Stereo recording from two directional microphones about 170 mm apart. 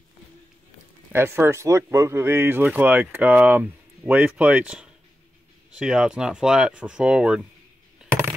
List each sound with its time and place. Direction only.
1.1 s speech: 15° right (ahead or behind)